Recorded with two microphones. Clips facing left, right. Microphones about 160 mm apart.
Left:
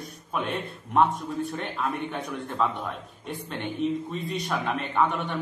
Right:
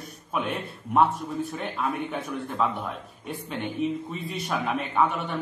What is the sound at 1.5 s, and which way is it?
A man's voice, 5° right (ahead or behind).